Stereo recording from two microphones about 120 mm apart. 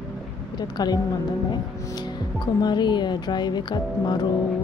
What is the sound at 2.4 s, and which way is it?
Speech, 40° left (ahead or behind).